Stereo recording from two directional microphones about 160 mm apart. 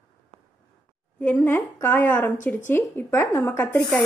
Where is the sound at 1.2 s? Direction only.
10° left (ahead or behind).